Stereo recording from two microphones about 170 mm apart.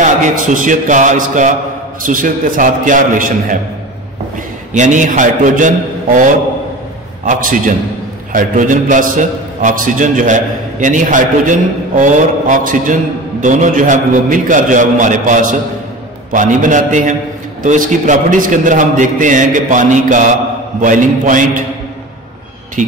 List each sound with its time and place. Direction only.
0.0 s a man's voice: 45° right (ahead or behind)
4.7 s a man's voice: 45° right (ahead or behind)
7.2 s a man's voice: 50° right (ahead or behind)
22.8 s speech: 50° right (ahead or behind)